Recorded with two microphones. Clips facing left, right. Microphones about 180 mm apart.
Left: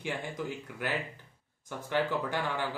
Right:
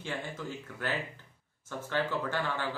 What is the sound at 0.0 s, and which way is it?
Speech, 15° left (ahead or behind).